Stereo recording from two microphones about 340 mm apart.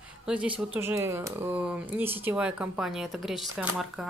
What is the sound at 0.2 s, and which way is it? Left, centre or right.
A woman's voice, centre.